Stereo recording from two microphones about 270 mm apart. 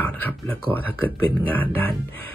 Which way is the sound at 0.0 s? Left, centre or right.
Centre.